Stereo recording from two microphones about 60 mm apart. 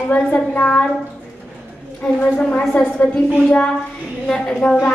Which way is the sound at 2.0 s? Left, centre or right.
Centre.